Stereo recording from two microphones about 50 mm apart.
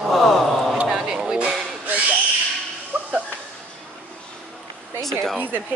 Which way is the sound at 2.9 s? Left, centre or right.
Right.